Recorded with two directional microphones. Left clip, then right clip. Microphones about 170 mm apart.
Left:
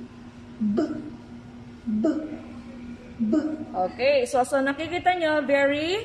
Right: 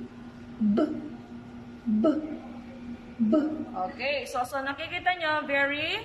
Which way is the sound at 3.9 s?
50° left (ahead or behind).